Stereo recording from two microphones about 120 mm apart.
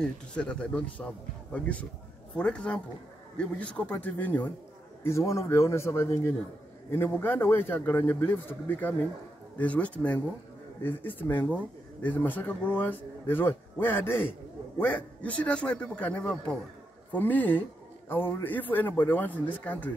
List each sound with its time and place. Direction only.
0.0 s a man's voice: 10° left (ahead or behind)